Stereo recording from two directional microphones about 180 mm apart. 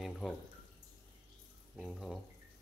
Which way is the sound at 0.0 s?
Centre (ahead or behind).